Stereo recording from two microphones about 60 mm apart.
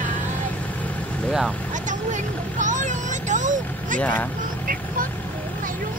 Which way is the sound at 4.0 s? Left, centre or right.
Left.